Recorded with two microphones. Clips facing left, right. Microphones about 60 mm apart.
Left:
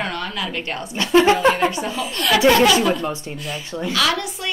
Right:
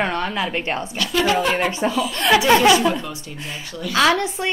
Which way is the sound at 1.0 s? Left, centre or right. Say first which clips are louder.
Left 7 dB; left.